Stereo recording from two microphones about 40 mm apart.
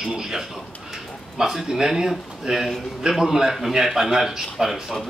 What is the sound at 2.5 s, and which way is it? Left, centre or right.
A man's voice, right.